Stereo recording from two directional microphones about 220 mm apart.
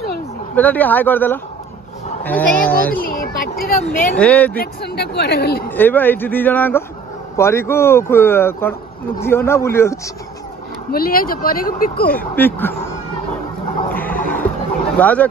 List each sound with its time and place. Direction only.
0.6 s speech: 10° left (ahead or behind)
3.0 s speech: 40° left (ahead or behind)
4.2 s speech: 5° left (ahead or behind)
4.6 s speech: 45° left (ahead or behind)
5.7 s speech: 10° left (ahead or behind)
10.9 s speech: 40° left (ahead or behind)
12.2 s speech: 10° left (ahead or behind)
13.9 s a sound: 10° left (ahead or behind)
15.0 s speech: 5° left (ahead or behind)